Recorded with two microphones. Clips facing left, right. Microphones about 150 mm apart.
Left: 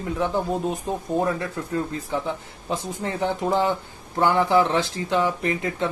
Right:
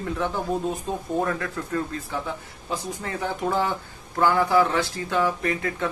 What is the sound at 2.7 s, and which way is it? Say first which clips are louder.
Speech: left 2 dB; 25° left (ahead or behind).